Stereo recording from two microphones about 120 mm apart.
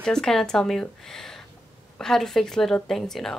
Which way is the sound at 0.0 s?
5° left (ahead or behind).